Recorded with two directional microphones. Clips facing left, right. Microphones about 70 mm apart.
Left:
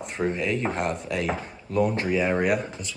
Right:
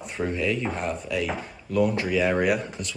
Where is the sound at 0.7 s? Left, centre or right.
Left.